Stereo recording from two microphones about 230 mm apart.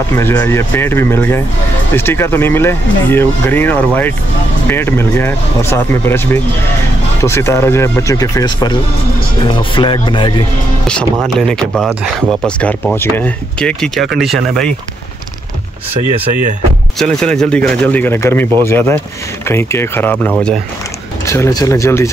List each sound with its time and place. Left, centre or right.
0.1 s speech: centre
11.3 s speech: centre
17.0 s speech: centre